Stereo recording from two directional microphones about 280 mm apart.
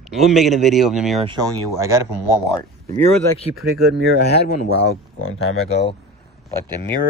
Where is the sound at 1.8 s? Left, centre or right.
Centre.